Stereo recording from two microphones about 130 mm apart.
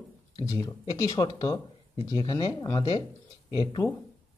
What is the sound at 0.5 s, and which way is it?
Speech, 25° left (ahead or behind).